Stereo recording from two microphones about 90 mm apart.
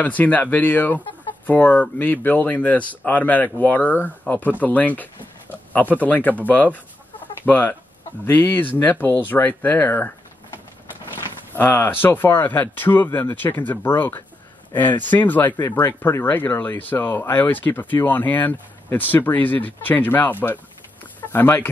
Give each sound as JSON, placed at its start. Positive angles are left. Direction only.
{"t": 0.0, "sound": "speech", "side_deg": 20}
{"t": 11.5, "sound": "speech", "side_deg": 20}